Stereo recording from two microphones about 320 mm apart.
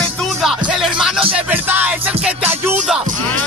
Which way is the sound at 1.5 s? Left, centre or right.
Centre.